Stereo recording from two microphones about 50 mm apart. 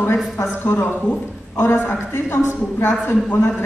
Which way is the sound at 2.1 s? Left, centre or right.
Left.